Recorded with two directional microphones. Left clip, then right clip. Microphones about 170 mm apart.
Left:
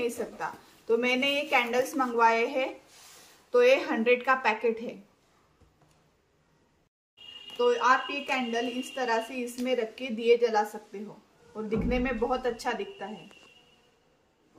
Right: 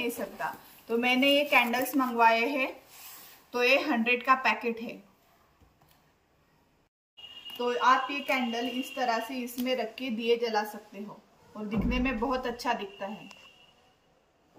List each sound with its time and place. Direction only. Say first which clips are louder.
0.4 s a woman's voice: right 1 dB; 50° left (ahead or behind); by 4.9 s 65° left (ahead or behind)
7.5 s a woman's voice: left 1 dB; 20° left (ahead or behind); by 10.7 s 35° left (ahead or behind)
11.9 s a woman's voice: left 1 dB; 30° left (ahead or behind)